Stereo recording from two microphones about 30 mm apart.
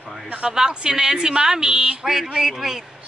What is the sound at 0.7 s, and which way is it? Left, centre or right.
A woman's voice, right.